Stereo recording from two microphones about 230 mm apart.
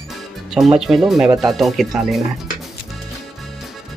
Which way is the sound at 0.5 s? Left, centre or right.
Centre.